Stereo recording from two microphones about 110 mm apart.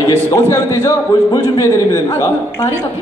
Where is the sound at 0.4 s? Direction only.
25° left (ahead or behind).